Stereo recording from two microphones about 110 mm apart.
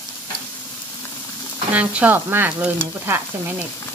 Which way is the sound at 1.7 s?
15° right (ahead or behind).